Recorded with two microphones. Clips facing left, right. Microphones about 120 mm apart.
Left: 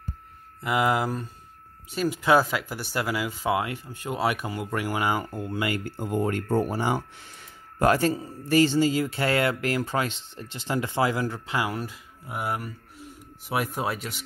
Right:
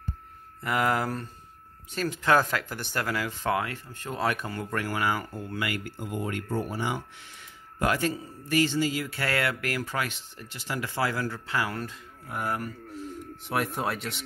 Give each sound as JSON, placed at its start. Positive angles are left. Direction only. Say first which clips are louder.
{"t": 0.7, "sound": "speech", "louder": "left 2 dB", "side_deg": 15}